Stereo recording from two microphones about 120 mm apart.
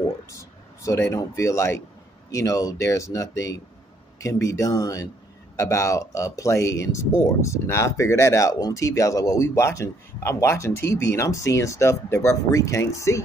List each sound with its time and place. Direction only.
0.3 s speech: 25° left (ahead or behind)